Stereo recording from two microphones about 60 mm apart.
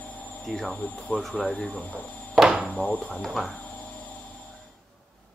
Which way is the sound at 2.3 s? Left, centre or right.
Centre.